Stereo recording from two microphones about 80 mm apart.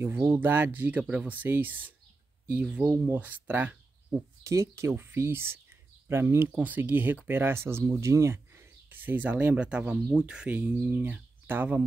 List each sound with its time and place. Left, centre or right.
0.0 s speech: right
3.1 s speech: right
4.4 s speech: right